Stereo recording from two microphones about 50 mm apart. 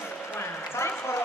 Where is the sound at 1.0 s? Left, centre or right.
Left.